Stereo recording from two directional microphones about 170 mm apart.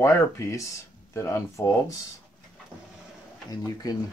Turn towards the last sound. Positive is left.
turn(degrees=20)  # may be behind; listen again after turning